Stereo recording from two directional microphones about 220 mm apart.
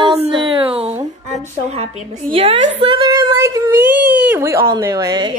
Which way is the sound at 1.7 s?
30° right (ahead or behind).